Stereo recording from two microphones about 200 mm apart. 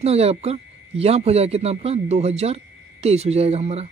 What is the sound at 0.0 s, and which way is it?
Speech, 30° right (ahead or behind).